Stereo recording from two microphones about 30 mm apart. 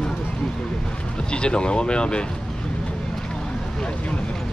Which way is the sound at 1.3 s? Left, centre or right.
Left.